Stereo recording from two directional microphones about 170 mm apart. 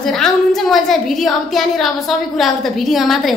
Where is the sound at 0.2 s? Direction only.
Centre (ahead or behind).